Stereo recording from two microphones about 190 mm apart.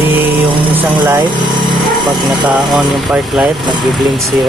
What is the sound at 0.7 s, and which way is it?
Vehicle, 10° right (ahead or behind).